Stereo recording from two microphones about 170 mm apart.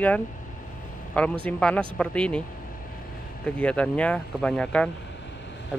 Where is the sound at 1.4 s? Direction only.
10° left (ahead or behind).